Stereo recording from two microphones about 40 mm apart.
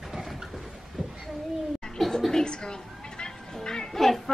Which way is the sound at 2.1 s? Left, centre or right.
Centre.